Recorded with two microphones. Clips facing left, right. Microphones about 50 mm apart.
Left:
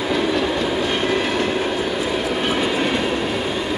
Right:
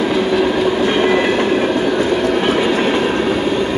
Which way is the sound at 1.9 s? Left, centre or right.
Right.